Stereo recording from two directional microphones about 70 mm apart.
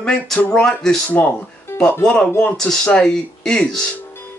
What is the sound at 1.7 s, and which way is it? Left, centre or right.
Music, left.